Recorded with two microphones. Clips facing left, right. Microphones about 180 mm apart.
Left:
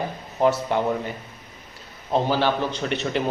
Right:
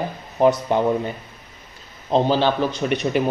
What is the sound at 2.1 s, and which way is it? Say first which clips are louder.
Speech: right 3 dB; 20° right (ahead or behind).